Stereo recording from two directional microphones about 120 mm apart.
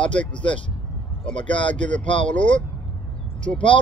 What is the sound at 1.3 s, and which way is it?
Speech, 45° left (ahead or behind).